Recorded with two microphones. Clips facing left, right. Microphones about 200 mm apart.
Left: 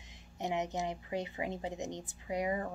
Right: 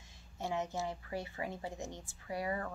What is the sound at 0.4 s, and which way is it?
A woman's voice, 20° left (ahead or behind).